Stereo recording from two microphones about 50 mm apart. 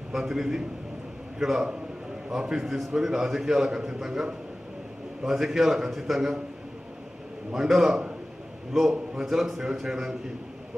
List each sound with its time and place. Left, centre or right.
0.1 s a man's voice: centre
7.5 s a man's voice: centre
9.1 s a man's voice: centre